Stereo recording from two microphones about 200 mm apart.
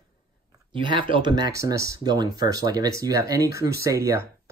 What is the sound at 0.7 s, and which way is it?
Speech, 25° right (ahead or behind).